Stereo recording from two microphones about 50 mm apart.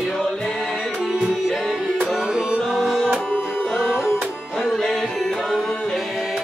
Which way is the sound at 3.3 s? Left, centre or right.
Left.